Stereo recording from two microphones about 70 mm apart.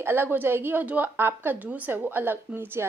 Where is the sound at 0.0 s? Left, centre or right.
Right.